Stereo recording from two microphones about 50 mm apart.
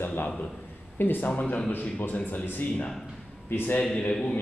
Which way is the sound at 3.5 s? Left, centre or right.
Left.